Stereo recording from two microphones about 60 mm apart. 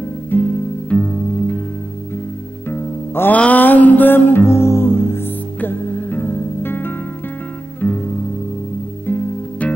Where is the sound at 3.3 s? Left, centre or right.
Left.